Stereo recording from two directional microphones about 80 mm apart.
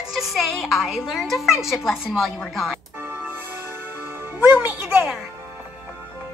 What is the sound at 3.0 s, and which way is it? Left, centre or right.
Music, right.